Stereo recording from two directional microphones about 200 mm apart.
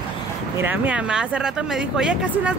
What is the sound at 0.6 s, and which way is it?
Speech, 10° right (ahead or behind).